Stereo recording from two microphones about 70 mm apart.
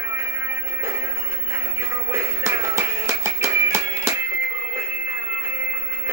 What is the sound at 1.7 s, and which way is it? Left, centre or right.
Music, right.